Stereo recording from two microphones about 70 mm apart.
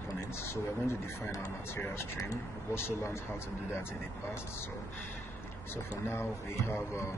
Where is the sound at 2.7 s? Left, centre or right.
Left.